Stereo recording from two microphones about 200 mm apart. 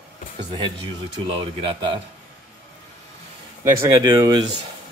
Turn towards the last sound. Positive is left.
turn(degrees=-20)  # may be behind; listen again after turning